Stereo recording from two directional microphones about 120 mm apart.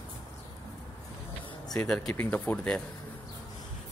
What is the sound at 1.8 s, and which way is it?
A man's voice, 5° left (ahead or behind).